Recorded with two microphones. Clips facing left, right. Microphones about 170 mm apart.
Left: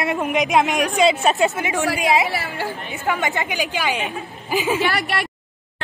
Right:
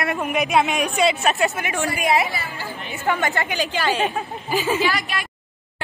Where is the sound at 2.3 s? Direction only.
70° left (ahead or behind).